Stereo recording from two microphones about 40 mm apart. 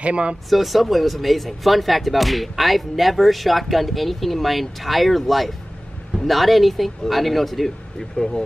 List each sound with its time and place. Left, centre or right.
0.0 s speech: right
0.5 s speech: centre